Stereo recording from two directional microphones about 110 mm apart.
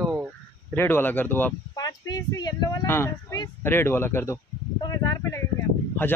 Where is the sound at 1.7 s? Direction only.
35° left (ahead or behind).